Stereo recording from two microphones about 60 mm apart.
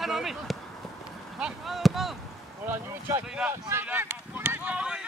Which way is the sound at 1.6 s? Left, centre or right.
Centre.